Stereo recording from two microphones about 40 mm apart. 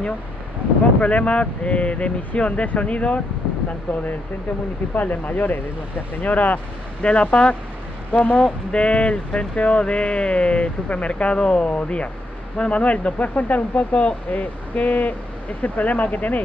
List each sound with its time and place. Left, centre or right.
1.0 s speech: left
4.9 s speech: left
7.0 s speech: left